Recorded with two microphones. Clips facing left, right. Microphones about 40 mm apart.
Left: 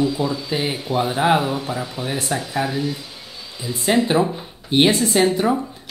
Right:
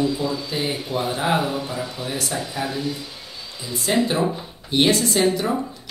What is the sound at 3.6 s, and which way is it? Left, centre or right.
Speech, centre.